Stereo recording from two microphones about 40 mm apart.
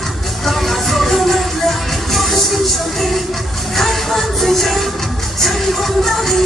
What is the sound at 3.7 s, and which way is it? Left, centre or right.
Music, centre.